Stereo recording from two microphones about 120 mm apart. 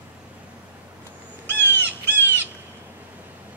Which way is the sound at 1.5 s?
20° left (ahead or behind).